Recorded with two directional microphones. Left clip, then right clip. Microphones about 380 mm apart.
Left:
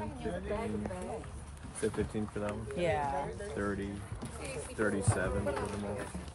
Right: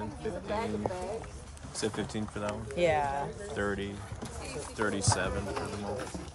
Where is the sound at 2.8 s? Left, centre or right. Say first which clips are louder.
Right 5 dB; centre.